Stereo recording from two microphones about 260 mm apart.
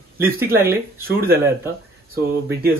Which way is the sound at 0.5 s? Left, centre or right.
Centre.